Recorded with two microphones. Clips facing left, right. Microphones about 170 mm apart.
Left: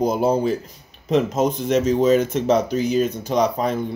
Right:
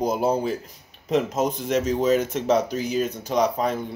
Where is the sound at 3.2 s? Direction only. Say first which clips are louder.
Left 2 dB; 25° left (ahead or behind).